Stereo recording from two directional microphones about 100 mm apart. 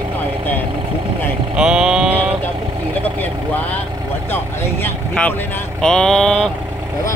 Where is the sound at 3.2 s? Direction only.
15° left (ahead or behind).